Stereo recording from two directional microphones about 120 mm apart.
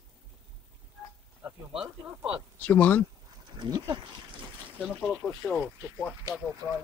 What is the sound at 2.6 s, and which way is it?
Speech, 15° left (ahead or behind).